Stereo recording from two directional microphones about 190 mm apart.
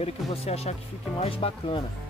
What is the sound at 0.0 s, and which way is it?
Speech, 35° left (ahead or behind).